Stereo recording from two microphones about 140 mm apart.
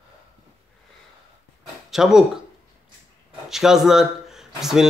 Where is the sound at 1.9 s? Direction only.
5° right (ahead or behind).